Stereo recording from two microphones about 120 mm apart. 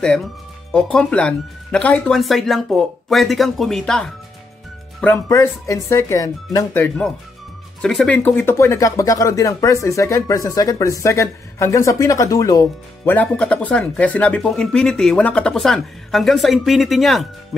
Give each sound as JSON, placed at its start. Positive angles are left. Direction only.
{"t": 0.0, "sound": "speech", "side_deg": 5}
{"t": 5.1, "sound": "speech", "side_deg": 25}
{"t": 7.8, "sound": "speech", "side_deg": 0}
{"t": 8.1, "sound": "speech", "side_deg": 20}
{"t": 13.0, "sound": "speech", "side_deg": 15}